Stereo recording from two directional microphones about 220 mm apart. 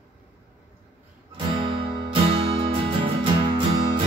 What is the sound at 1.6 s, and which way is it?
Music, 25° right (ahead or behind).